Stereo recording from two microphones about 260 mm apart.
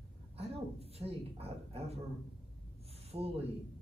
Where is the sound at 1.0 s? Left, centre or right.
Right.